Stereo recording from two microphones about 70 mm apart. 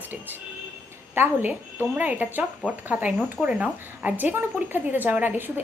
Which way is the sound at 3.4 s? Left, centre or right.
Centre.